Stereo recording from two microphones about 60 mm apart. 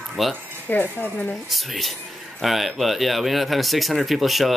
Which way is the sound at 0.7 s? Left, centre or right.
Left.